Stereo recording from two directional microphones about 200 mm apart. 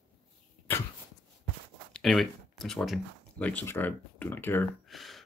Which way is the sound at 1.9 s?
Centre (ahead or behind).